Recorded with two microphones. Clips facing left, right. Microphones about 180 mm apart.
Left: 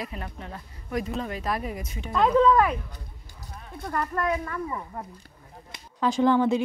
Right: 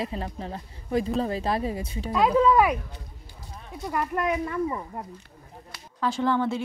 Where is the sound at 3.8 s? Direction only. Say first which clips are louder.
Right 1 dB; 15° right (ahead or behind).